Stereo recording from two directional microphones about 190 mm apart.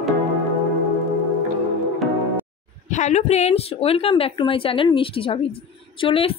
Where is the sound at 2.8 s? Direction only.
40° left (ahead or behind).